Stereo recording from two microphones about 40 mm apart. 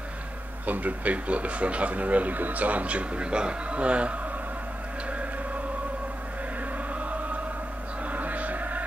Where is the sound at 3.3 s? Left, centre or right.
Right.